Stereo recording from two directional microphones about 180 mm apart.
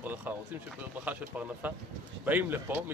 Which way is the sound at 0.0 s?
10° right (ahead or behind).